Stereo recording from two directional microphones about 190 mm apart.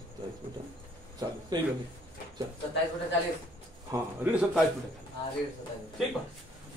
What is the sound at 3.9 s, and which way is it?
Speech, 10° right (ahead or behind).